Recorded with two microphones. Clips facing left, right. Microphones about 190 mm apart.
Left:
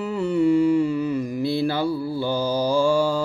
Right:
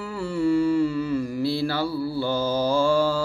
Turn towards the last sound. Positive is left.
turn(degrees=15)  # may be behind; listen again after turning